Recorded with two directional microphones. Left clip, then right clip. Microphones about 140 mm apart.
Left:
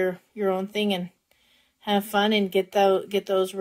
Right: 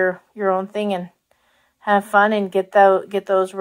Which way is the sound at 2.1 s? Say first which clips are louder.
Right 4 dB; 25° left (ahead or behind).